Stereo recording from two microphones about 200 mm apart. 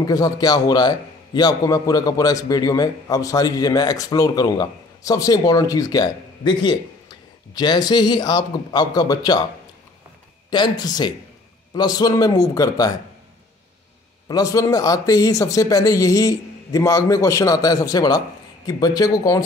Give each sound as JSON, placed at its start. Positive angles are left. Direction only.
{"t": 0.0, "sound": "a man's voice", "side_deg": 20}
{"t": 10.5, "sound": "a man's voice", "side_deg": 20}
{"t": 14.2, "sound": "a man's voice", "side_deg": 15}